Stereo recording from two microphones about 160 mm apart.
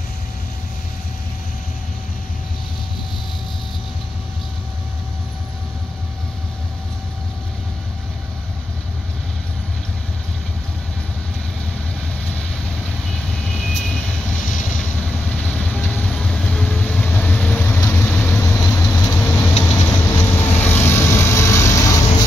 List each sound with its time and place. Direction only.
14.4 s vehicle: 55° left (ahead or behind)
14.8 s vehicle: 5° left (ahead or behind)